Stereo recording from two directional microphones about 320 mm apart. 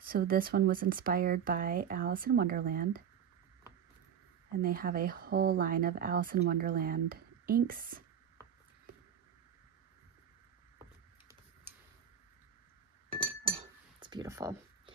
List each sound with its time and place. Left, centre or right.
0.0 s speech: right
4.6 s speech: right
13.1 s cutlery: centre